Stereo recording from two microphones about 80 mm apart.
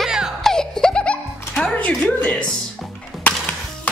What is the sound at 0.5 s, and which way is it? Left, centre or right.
Music, centre.